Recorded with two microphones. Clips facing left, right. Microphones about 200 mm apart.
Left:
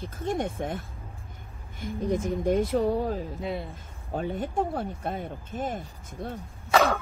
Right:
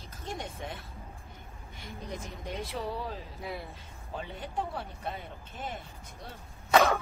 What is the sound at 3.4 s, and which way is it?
Speech, 25° left (ahead or behind).